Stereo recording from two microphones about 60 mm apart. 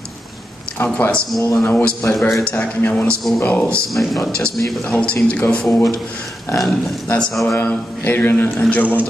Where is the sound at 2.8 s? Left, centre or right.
Left.